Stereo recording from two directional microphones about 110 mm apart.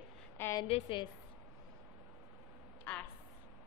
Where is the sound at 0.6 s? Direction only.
55° left (ahead or behind).